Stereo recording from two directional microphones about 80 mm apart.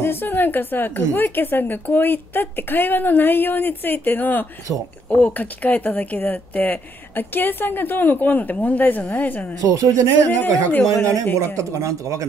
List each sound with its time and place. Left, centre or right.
0.0 s speech: left
9.6 s speech: right
10.2 s speech: left
11.3 s speech: right